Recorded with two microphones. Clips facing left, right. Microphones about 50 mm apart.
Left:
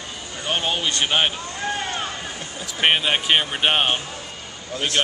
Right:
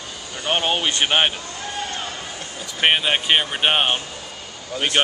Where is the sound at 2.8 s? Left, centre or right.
Centre.